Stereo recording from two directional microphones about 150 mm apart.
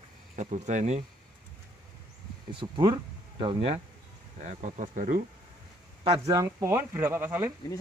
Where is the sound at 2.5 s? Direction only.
30° right (ahead or behind).